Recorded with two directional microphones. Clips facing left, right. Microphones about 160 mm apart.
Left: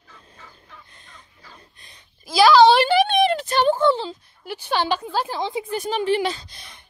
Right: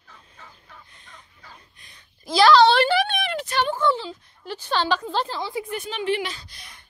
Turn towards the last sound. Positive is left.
turn(degrees=25)  # may be behind; listen again after turning